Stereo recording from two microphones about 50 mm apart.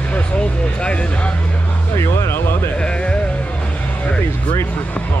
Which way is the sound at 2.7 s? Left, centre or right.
Left.